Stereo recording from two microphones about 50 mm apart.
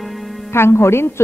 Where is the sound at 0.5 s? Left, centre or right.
Left.